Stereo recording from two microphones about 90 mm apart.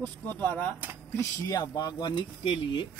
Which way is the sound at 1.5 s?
45° left (ahead or behind).